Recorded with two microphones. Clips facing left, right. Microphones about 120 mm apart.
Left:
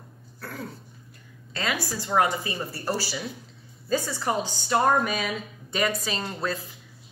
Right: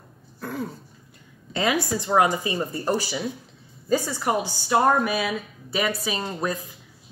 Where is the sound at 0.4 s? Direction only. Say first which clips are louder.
Right 6 dB; 15° right (ahead or behind).